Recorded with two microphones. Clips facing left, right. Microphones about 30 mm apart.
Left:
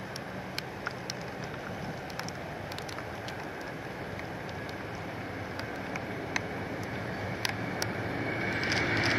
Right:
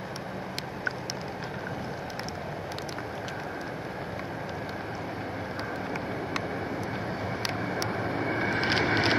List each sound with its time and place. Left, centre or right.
8.0 s vehicle: right
8.4 s vehicle: right